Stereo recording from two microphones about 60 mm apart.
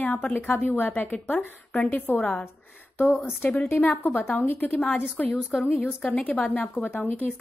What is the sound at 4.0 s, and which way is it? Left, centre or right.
Speech, left.